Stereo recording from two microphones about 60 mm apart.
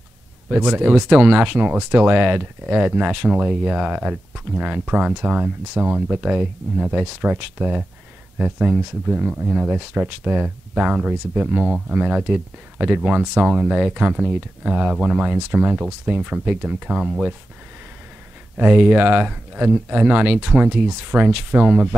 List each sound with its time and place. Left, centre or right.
0.5 s speech: right
6.2 s speech: centre
12.0 s speech: centre
13.6 s speech: centre
13.9 s speech: right
18.6 s speech: centre